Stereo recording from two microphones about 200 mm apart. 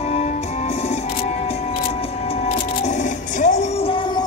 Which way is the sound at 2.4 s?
35° left (ahead or behind).